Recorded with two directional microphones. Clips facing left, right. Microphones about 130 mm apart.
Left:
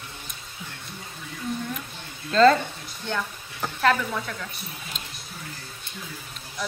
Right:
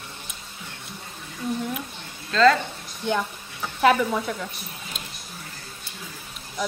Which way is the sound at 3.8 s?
15° right (ahead or behind).